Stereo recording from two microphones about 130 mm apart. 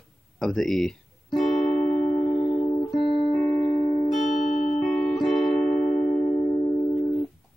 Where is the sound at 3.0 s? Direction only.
40° left (ahead or behind).